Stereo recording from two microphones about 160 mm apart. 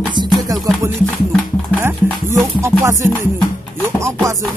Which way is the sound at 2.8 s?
20° right (ahead or behind).